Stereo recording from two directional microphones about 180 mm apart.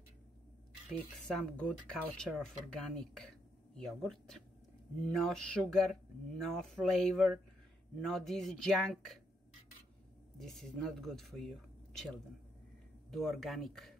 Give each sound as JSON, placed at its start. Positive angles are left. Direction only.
{"t": 0.8, "sound": "speech", "side_deg": 5}
{"t": 10.4, "sound": "speech", "side_deg": 5}